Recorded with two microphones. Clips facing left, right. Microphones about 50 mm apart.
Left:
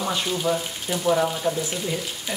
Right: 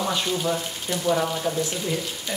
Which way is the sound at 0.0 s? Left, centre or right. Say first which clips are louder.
Even; centre.